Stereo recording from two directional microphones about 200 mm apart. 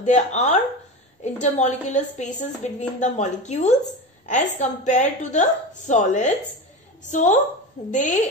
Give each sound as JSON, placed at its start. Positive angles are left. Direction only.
{"t": 0.0, "sound": "a woman's voice", "side_deg": 35}